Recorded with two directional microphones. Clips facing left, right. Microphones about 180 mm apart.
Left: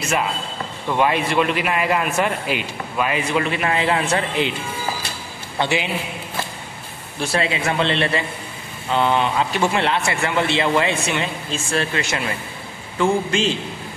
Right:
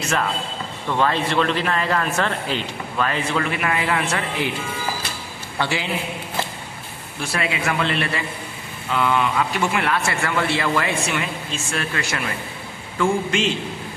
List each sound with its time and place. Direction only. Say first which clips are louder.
0.9 s a man's voice: left 2 dB; 15° left (ahead or behind)
3.5 s a man's voice: left 2 dB; 25° left (ahead or behind)
5.6 s a man's voice: left 3 dB; 20° left (ahead or behind)
7.2 s a man's voice: left 3 dB; 30° left (ahead or behind)